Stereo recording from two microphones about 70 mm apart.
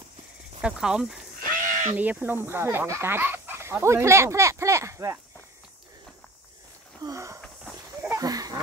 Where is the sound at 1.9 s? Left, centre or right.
Right.